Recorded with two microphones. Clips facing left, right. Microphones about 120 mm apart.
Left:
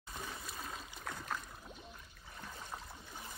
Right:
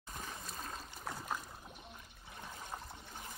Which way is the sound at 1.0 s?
10° right (ahead or behind).